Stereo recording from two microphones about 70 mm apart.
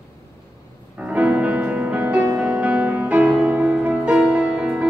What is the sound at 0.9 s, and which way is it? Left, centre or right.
Music, right.